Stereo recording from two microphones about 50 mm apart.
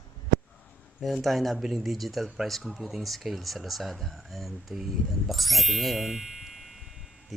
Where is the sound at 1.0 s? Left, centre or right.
Centre.